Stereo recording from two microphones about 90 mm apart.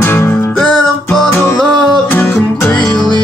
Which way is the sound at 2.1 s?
20° left (ahead or behind).